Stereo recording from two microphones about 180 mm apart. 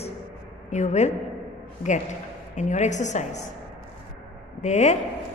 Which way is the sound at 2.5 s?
40° left (ahead or behind).